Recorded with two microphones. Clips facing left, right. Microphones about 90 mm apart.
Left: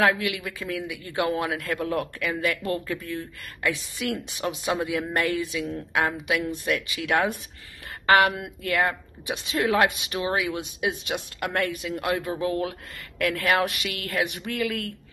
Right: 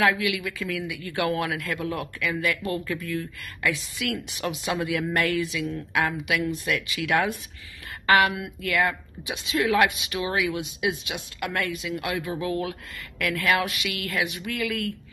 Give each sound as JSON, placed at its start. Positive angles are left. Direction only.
{"t": 0.0, "sound": "speech", "side_deg": 35}
{"t": 2.9, "sound": "speech", "side_deg": 25}
{"t": 5.4, "sound": "speech", "side_deg": 35}
{"t": 12.2, "sound": "speech", "side_deg": 30}